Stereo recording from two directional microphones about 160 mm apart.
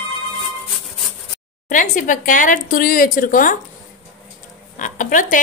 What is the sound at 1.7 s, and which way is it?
Speech, 55° left (ahead or behind).